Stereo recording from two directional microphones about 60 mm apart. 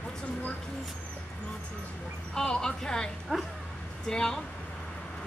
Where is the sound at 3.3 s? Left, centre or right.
Centre.